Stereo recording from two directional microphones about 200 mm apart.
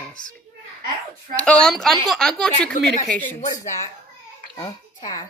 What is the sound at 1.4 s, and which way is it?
Speech, 5° left (ahead or behind).